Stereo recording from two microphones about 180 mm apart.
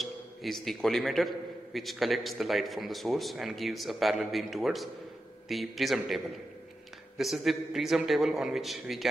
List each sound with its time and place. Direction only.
0.0 s a man's voice: centre (ahead or behind)